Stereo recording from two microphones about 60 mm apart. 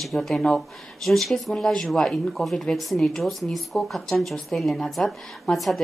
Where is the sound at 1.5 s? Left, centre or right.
Centre.